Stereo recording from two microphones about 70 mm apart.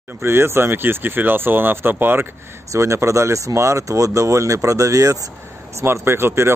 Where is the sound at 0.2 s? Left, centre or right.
Right.